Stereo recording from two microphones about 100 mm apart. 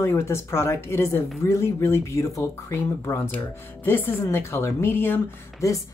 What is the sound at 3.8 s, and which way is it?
Speech, 25° left (ahead or behind).